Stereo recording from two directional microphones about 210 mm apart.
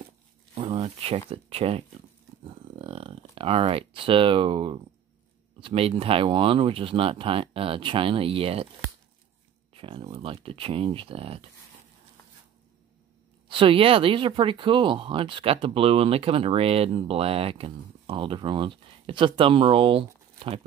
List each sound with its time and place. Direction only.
0.6 s a sound: 25° right (ahead or behind)
1.3 s speech: 30° right (ahead or behind)
2.4 s a sound: 25° right (ahead or behind)
5.6 s speech: 25° right (ahead or behind)
9.8 s speech: 25° right (ahead or behind)
13.5 s speech: 25° right (ahead or behind)